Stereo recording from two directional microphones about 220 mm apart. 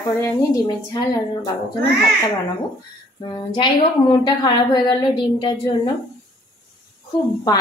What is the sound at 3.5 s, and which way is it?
A woman's voice, 20° left (ahead or behind).